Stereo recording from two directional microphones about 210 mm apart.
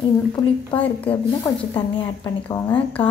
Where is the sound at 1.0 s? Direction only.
25° left (ahead or behind).